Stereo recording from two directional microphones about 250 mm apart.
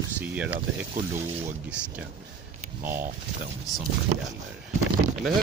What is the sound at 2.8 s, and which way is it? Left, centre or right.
Speech, right.